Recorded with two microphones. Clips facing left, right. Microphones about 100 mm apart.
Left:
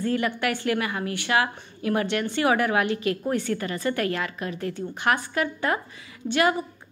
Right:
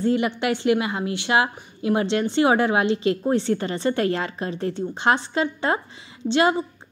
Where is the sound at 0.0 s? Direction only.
20° right (ahead or behind).